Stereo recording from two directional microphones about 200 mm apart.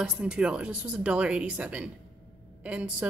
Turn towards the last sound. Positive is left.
turn(degrees=-5)  # may be behind; listen again after turning